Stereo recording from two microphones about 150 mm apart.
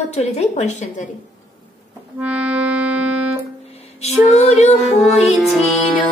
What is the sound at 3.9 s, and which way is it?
Female singing, 45° left (ahead or behind).